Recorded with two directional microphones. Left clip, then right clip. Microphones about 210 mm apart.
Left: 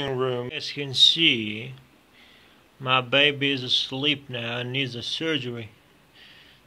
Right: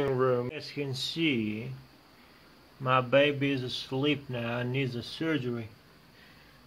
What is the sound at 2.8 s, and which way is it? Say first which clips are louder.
Speech: left 4 dB; 15° left (ahead or behind).